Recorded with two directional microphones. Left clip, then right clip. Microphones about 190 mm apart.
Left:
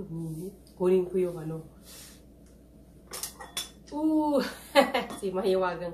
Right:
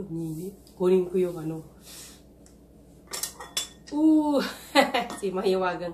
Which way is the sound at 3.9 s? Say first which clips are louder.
Right 4 dB; 5° right (ahead or behind).